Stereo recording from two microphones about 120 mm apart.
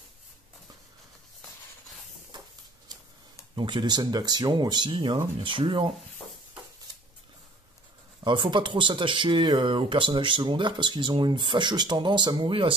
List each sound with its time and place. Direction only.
3.5 s speech: 40° right (ahead or behind)
8.2 s speech: 40° right (ahead or behind)